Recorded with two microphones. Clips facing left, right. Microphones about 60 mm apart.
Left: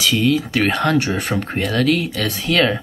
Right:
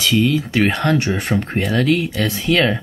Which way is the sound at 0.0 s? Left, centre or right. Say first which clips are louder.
Even; centre.